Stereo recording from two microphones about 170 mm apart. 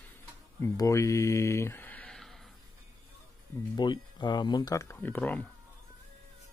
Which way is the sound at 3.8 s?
25° left (ahead or behind).